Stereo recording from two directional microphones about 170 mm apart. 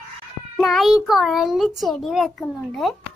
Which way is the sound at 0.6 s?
Centre (ahead or behind).